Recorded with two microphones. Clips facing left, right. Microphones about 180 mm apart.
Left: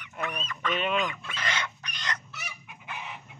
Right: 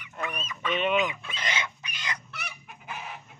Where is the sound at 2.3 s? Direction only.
60° right (ahead or behind).